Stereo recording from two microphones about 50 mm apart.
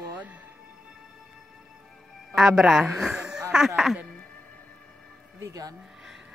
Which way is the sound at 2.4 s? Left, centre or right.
Centre.